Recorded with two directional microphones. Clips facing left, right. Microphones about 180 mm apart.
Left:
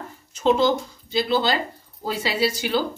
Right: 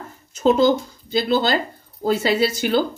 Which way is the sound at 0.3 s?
45° right (ahead or behind).